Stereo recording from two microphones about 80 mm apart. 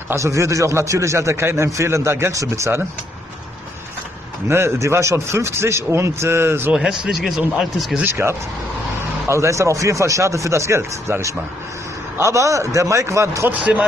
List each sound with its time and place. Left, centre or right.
0.1 s a man's voice: right
4.5 s a man's voice: right
6.7 s speech: centre
8.0 s a man's voice: right
13.5 s speech: centre